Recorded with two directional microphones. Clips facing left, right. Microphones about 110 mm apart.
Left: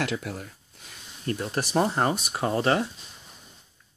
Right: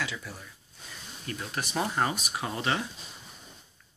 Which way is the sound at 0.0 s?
65° left (ahead or behind).